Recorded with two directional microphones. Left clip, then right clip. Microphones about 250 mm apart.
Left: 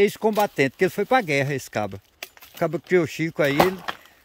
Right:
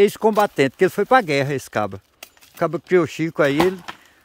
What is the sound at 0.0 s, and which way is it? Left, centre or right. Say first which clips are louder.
Speech: right 4 dB; centre.